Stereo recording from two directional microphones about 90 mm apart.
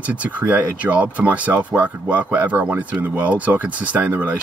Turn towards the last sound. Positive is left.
turn(degrees=-15)  # may be behind; listen again after turning